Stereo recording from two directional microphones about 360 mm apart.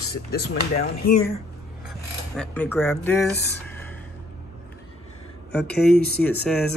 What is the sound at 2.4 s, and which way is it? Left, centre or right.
Speech, centre.